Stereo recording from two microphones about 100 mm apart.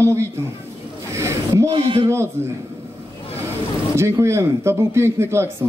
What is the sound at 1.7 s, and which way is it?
Speech, 60° right (ahead or behind).